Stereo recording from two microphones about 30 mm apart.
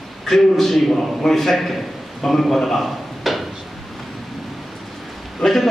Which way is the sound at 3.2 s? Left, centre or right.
Centre.